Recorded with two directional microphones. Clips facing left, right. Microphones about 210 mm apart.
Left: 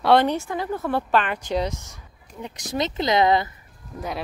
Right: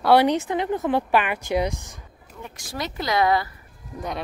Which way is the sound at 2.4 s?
20° left (ahead or behind).